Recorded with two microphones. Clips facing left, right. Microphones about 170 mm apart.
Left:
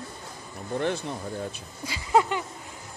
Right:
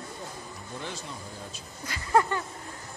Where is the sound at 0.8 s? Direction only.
60° left (ahead or behind).